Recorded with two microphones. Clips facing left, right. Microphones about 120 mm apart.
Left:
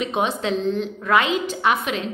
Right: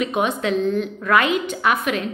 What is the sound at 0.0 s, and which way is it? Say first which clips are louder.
A woman's voice: right 2 dB; 30° left (ahead or behind).